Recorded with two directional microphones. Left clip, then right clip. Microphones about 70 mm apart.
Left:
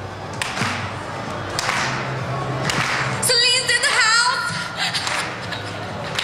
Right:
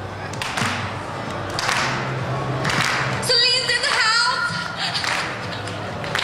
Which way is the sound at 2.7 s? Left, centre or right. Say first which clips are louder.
Right 1 dB; centre.